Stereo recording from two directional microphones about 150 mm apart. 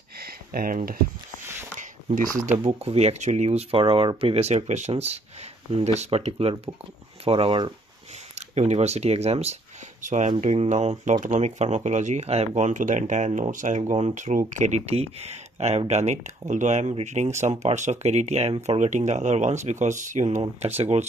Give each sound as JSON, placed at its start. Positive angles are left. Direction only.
{"t": 0.2, "sound": "a sound", "side_deg": -85}
{"t": 2.8, "sound": "speech", "side_deg": -45}
{"t": 8.4, "sound": "speech", "side_deg": -50}